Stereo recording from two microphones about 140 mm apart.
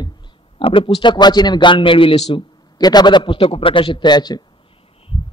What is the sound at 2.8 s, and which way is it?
A man's voice, 30° left (ahead or behind).